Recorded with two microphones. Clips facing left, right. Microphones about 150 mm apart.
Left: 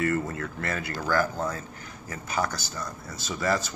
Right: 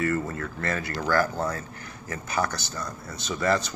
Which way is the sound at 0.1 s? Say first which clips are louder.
Even; 20° left (ahead or behind).